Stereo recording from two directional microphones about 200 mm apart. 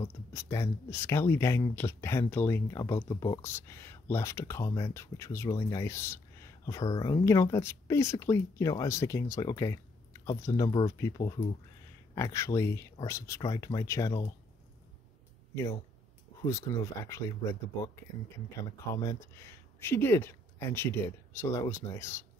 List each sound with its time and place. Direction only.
0.0 s speech: 15° left (ahead or behind)
16.4 s speech: 15° left (ahead or behind)
18.9 s speech: 15° left (ahead or behind)